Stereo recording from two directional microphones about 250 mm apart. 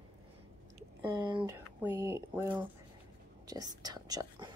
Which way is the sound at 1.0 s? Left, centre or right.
Centre.